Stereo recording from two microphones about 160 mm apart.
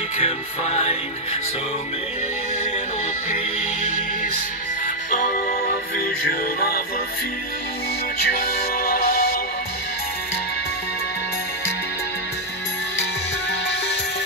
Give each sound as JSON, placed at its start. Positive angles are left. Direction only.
{"t": 0.2, "sound": "music", "side_deg": 40}
{"t": 5.1, "sound": "music", "side_deg": 60}